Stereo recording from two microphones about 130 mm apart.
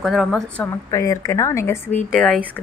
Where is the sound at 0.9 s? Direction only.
25° left (ahead or behind); by 2.4 s 10° left (ahead or behind).